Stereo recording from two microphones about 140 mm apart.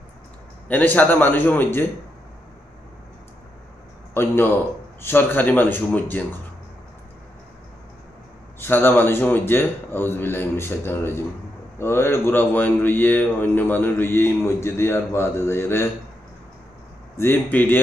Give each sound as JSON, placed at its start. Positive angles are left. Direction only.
{"t": 0.7, "sound": "a man's voice", "side_deg": 10}
{"t": 4.1, "sound": "a man's voice", "side_deg": 15}
{"t": 8.5, "sound": "a man's voice", "side_deg": 15}
{"t": 17.2, "sound": "a man's voice", "side_deg": 15}